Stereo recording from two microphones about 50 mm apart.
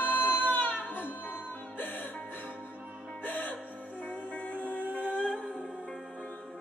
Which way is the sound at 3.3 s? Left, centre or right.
Left.